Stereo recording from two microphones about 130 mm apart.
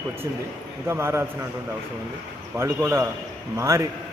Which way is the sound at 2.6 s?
20° right (ahead or behind).